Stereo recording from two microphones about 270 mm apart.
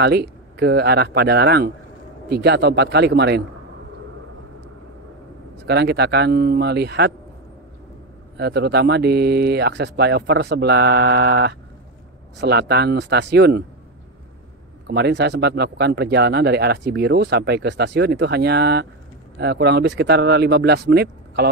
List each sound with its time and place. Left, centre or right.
0.0 s speech: right
5.7 s speech: right
8.4 s speech: right
14.9 s speech: right